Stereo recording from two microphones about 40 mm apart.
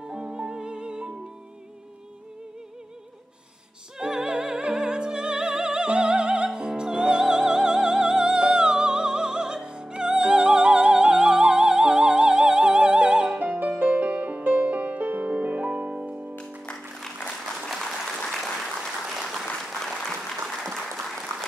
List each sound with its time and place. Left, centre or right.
0.0 s music: right
4.0 s music: centre
13.4 s music: right
17.6 s applause: centre